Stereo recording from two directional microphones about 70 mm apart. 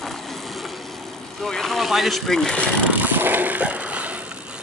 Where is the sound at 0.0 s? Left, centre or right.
Centre.